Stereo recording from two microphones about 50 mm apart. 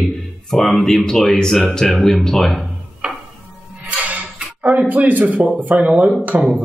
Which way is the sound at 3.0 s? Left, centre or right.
Centre.